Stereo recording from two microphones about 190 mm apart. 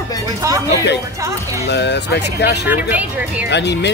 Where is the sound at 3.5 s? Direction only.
65° left (ahead or behind).